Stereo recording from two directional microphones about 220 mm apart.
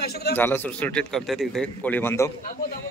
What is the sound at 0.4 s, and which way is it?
A man's voice, 10° left (ahead or behind).